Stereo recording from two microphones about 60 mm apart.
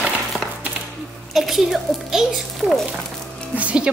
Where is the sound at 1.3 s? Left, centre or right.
Centre.